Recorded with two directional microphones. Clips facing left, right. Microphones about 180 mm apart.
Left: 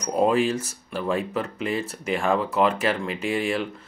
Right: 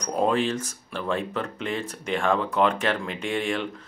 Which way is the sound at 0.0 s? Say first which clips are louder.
Left 3 dB; 5° left (ahead or behind).